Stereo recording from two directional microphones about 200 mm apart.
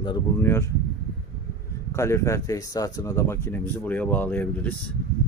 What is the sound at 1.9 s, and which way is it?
Speech, 15° left (ahead or behind).